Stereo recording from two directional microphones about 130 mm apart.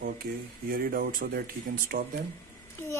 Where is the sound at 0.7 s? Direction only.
90° right.